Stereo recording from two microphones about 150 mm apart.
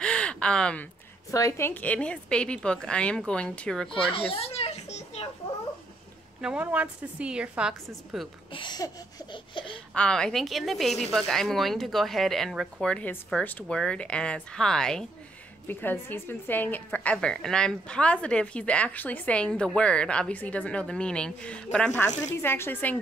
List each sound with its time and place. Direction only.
0.0 s a sound: 5° left (ahead or behind)
1.3 s a woman's voice: 20° left (ahead or behind)
4.3 s children playing: 40° left (ahead or behind)
6.4 s a woman's voice: 10° right (ahead or behind)
8.5 s a sound: 30° left (ahead or behind)
9.9 s a woman's voice: 5° left (ahead or behind)